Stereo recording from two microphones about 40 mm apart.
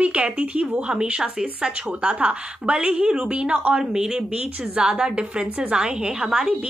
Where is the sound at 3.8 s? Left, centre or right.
Centre.